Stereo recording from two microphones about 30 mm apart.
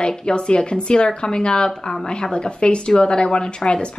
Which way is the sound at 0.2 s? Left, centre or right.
Left.